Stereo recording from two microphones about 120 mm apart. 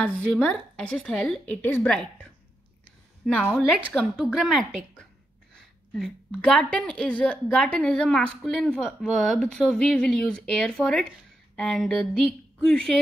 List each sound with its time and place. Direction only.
0.0 s a woman's voice: 5° left (ahead or behind)
3.3 s a woman's voice: 10° left (ahead or behind)
3.9 s a woman's voice: 5° right (ahead or behind)